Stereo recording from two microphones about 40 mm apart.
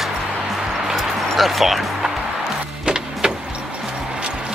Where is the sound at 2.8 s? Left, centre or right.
Centre.